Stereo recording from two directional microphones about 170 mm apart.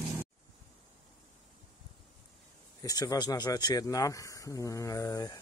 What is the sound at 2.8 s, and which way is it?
Speech, 20° left (ahead or behind).